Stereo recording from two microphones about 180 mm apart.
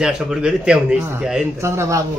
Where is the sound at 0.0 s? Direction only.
5° right (ahead or behind).